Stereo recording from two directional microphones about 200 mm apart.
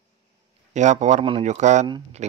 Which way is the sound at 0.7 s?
35° right (ahead or behind).